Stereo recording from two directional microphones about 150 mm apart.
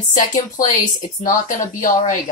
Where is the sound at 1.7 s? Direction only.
65° left (ahead or behind).